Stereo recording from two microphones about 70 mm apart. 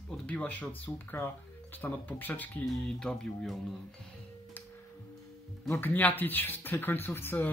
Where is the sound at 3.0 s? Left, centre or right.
Centre.